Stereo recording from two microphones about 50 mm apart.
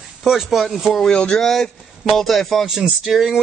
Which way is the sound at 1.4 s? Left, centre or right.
Centre.